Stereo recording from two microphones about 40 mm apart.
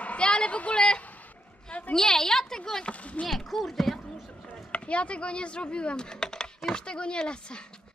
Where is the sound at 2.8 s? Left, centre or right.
Left.